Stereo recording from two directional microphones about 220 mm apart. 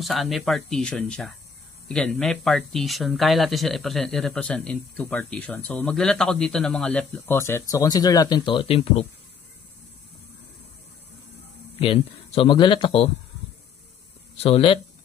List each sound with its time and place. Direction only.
0.0 s speech: centre (ahead or behind); by 9.0 s 25° left (ahead or behind)
11.8 s speech: 25° left (ahead or behind)
14.4 s speech: 25° left (ahead or behind)